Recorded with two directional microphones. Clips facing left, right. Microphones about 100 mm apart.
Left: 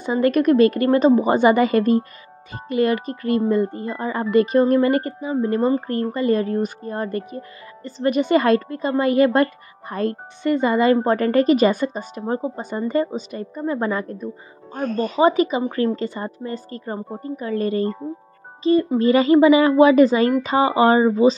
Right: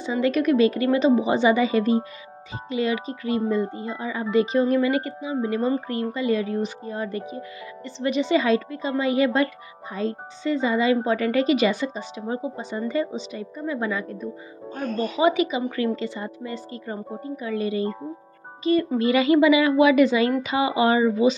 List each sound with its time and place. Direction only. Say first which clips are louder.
0.0 s speech: left 4 dB; 50° left (ahead or behind)
18.6 s a woman's voice: left 4 dB; 30° left (ahead or behind)